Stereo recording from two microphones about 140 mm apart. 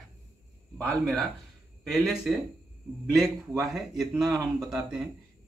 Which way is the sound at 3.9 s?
25° right (ahead or behind).